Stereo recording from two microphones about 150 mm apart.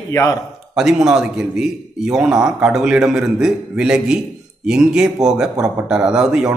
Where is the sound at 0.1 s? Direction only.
25° left (ahead or behind).